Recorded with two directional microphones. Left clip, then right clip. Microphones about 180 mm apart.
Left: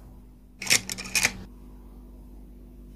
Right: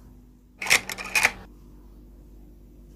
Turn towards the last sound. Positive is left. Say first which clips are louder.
# right 4 dB
turn(degrees=0)  # may be behind; listen again after turning